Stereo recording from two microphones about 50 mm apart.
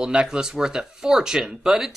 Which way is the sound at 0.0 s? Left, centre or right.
Centre.